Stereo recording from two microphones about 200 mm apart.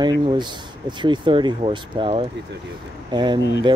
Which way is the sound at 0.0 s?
20° right (ahead or behind).